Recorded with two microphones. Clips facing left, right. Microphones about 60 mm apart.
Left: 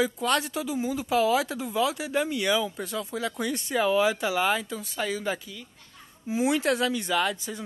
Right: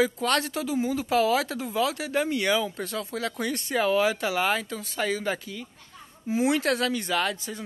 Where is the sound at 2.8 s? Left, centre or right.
Centre.